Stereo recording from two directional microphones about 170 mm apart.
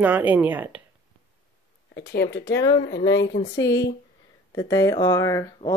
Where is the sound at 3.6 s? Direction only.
90° left.